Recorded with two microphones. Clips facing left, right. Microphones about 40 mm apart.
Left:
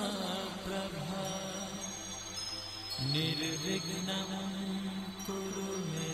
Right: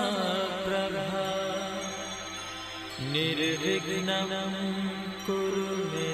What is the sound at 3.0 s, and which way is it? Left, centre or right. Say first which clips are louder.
Mantra: right 7 dB; right.